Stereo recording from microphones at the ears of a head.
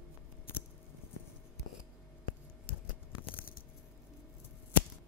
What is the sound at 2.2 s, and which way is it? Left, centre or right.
Scissors, left.